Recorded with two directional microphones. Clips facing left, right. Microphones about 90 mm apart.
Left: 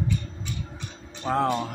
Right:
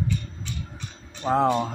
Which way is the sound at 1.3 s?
15° right (ahead or behind).